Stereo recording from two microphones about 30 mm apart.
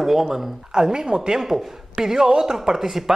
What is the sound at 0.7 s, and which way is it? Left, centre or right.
A woman's voice, right.